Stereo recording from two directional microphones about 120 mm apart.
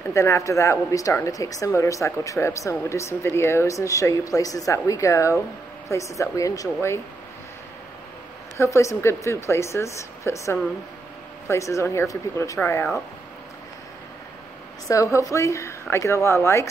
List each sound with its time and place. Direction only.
0.1 s speech: 25° left (ahead or behind)
8.5 s speech: 25° left (ahead or behind)
14.9 s speech: 25° left (ahead or behind)